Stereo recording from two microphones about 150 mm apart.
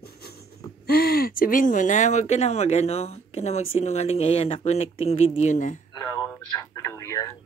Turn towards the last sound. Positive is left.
turn(degrees=20)  # may be behind; listen again after turning